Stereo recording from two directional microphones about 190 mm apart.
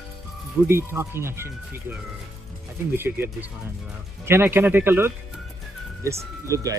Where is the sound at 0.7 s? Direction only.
15° right (ahead or behind).